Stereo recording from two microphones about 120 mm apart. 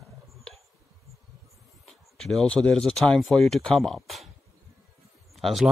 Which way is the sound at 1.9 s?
5° left (ahead or behind).